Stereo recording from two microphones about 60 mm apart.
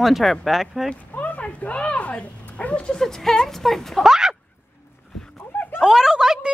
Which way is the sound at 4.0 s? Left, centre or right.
Centre.